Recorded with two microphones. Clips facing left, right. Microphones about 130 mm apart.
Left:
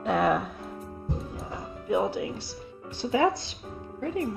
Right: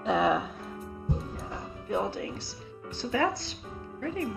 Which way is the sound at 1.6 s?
25° left (ahead or behind).